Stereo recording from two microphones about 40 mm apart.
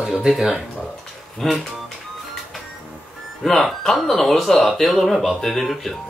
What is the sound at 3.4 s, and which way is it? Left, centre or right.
Speech, centre.